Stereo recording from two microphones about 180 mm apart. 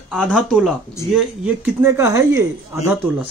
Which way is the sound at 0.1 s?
Centre (ahead or behind).